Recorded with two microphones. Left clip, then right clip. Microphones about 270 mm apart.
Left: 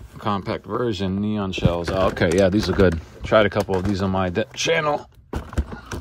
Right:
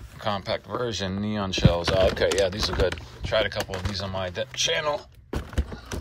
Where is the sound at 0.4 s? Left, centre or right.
Centre.